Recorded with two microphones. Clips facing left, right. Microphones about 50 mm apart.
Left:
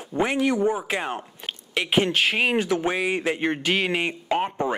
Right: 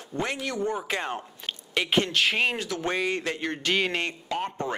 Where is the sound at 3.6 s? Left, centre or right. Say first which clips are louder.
Right 1 dB; centre.